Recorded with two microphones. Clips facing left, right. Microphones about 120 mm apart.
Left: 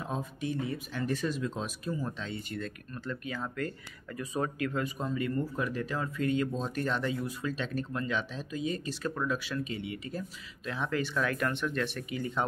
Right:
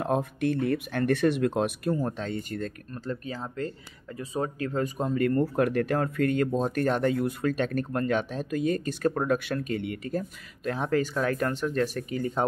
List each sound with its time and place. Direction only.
0.0 s speech: 65° right (ahead or behind); by 12.4 s 40° right (ahead or behind)